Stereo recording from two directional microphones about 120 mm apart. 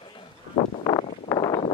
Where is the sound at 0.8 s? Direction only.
35° left (ahead or behind).